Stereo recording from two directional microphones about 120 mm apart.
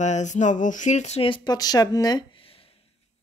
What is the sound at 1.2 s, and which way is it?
Speech, 45° left (ahead or behind).